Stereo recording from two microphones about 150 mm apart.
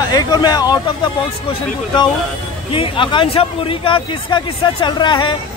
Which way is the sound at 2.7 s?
35° left (ahead or behind).